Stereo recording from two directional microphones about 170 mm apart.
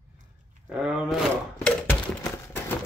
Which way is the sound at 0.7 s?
5° right (ahead or behind).